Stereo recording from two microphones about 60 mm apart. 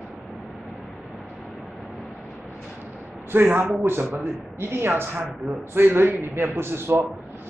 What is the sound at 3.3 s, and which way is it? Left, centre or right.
A woman's voice, right.